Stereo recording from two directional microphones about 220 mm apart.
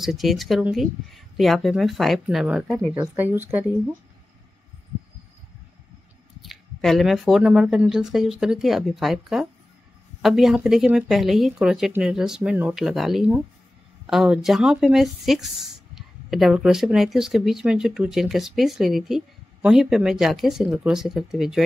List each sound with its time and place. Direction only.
0.0 s speech: centre (ahead or behind)
6.4 s speech: centre (ahead or behind)